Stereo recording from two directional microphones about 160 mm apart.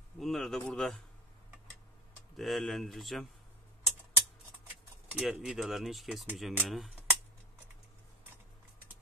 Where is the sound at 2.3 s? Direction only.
Centre (ahead or behind).